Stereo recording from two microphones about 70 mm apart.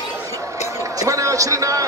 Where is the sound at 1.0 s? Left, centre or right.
Right.